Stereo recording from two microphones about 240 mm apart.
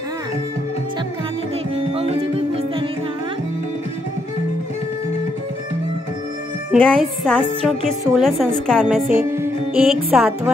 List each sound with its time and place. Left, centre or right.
2.0 s music: right
6.7 s a woman's voice: centre
9.4 s music: centre